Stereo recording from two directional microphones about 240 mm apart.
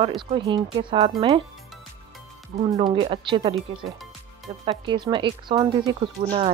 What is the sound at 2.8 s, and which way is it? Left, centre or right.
Speech, centre.